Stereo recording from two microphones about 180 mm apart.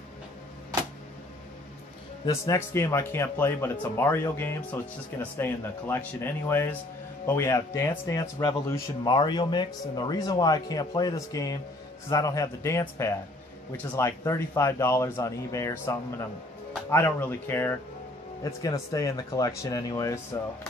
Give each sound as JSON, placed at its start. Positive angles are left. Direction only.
{"t": 2.2, "sound": "speech", "side_deg": 20}